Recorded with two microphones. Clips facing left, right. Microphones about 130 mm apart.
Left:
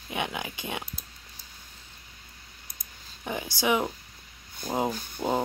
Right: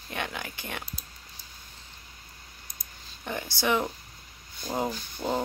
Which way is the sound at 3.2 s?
10° left (ahead or behind).